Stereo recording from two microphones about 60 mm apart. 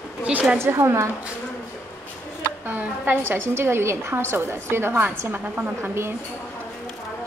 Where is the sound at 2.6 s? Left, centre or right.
Right.